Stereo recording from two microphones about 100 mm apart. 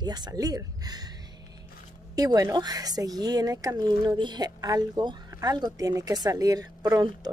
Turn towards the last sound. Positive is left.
turn(degrees=-40)  # may be behind; listen again after turning